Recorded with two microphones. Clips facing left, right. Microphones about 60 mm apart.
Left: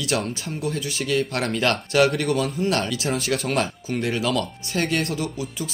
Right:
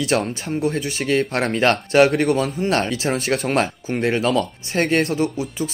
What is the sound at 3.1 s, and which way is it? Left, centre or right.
Speech, right.